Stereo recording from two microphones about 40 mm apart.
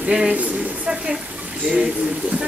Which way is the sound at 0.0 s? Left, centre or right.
Centre.